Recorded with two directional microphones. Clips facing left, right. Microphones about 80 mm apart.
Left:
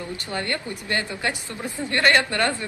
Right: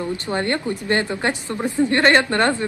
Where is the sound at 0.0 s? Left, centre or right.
Right.